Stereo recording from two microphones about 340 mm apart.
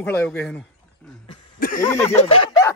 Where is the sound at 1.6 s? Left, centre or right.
Left.